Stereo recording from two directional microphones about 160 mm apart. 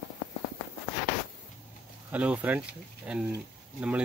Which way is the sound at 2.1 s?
10° right (ahead or behind).